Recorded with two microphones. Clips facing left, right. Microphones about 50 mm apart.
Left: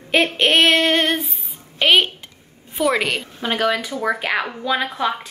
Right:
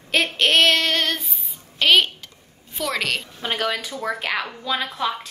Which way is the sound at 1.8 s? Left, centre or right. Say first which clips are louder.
Left 2 dB; left.